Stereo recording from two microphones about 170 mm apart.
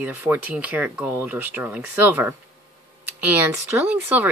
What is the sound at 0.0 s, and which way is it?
Speech, 10° right (ahead or behind).